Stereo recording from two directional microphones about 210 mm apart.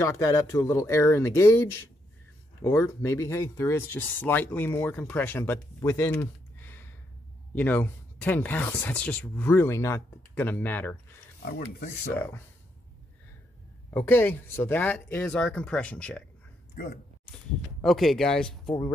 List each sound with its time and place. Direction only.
0.0 s speech: 15° left (ahead or behind)
5.9 s a sound: 10° left (ahead or behind)
7.5 s speech: 10° left (ahead or behind)
11.4 s speech: 45° left (ahead or behind)
12.1 s speech: 10° left (ahead or behind)
13.8 s speech: 10° left (ahead or behind)
17.8 s speech: centre (ahead or behind)